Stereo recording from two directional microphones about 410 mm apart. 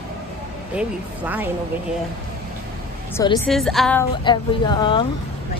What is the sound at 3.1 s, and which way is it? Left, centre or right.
A woman's voice, centre.